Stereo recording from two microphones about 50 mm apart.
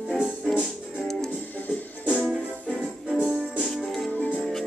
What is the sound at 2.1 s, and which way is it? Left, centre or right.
Music, right.